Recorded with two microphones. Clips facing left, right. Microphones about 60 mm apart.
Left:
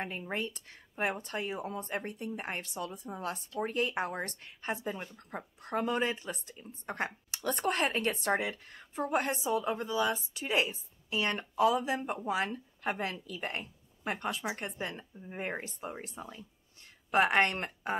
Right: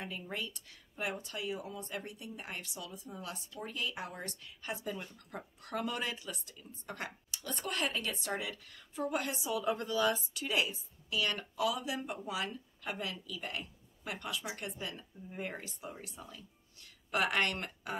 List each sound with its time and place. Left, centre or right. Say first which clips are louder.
0.0 s speech: left 5 dB; left
7.2 s speech: left 10 dB; left
9.7 s speech: left 1 dB; centre